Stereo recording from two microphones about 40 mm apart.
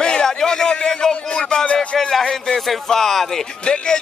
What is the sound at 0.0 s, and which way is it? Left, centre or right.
Music, centre.